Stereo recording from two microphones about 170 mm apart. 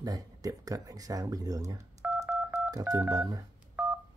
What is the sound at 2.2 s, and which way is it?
Telephone dialing, 10° right (ahead or behind).